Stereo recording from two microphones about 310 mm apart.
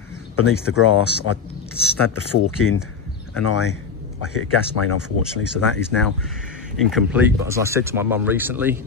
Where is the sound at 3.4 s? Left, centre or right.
Left.